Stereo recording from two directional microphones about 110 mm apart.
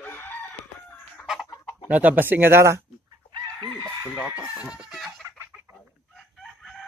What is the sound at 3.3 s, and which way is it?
Chicken, 40° right (ahead or behind).